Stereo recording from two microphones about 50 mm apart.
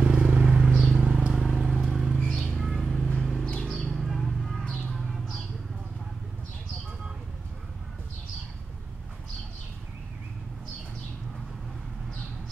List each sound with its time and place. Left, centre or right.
0.0 s vehicle: right
1.3 s vehicle: centre
2.1 s a sound: centre
3.2 s vehicle: centre
3.6 s bird: centre
4.0 s a sound: centre
4.9 s bird: centre